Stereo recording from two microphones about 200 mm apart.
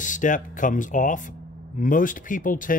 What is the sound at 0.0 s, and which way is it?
Speech, 40° left (ahead or behind).